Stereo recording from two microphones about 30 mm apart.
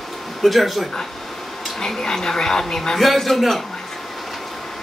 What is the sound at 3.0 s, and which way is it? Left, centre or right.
Speech, centre.